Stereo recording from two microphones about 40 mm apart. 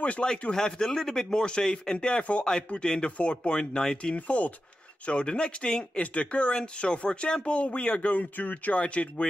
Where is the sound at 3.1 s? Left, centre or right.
Left.